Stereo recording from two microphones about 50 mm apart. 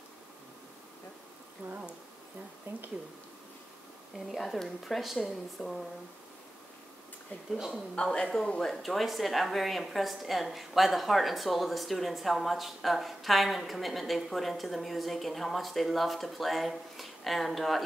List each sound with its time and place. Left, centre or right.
1.6 s speech: right
2.7 s speech: right
4.3 s a woman's voice: centre
7.9 s a woman's voice: centre